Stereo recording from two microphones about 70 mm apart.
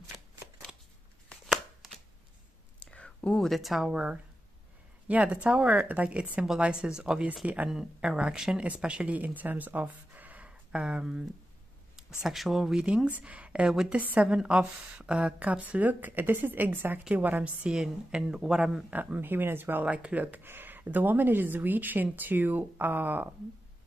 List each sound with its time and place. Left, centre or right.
2.8 s whispering: centre
3.3 s speech: centre
3.9 s speech: centre
12.7 s speech: centre
13.7 s speech: centre
13.9 s speech: right
17.6 s speech: centre
18.9 s speech: right
19.8 s speech: centre